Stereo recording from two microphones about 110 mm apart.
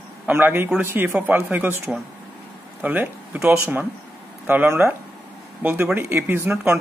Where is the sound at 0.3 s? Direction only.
20° right (ahead or behind).